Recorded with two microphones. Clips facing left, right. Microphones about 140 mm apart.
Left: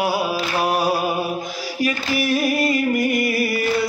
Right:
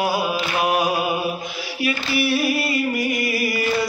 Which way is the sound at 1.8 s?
45° left (ahead or behind).